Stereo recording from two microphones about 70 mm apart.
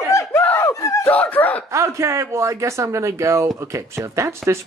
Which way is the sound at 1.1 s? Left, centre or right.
Left.